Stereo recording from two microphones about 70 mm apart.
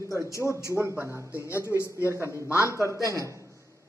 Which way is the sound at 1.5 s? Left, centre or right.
Left.